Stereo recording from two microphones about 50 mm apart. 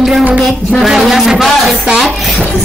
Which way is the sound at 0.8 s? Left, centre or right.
Centre.